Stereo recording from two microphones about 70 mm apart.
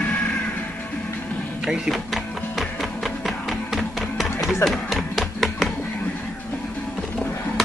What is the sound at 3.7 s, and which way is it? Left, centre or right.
Music, centre.